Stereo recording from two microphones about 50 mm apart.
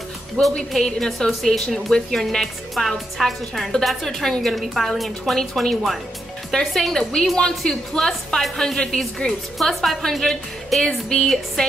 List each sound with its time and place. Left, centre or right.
0.6 s a woman's voice: centre
9.6 s a woman's voice: centre